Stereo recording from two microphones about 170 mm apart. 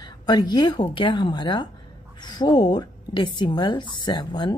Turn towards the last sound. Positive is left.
turn(degrees=25)  # may be behind; listen again after turning